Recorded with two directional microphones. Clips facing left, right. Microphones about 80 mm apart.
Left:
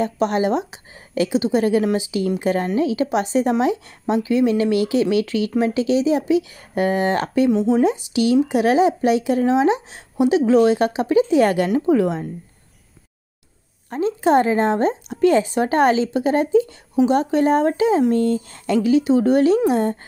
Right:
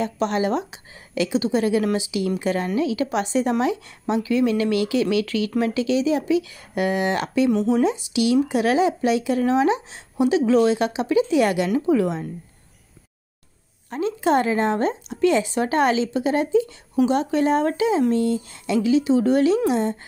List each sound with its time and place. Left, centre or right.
0.0 s a woman's voice: left
13.8 s a woman's voice: left
19.7 s speech: left